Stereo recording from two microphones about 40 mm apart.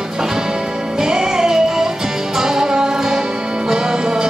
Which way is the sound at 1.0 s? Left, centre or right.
Centre.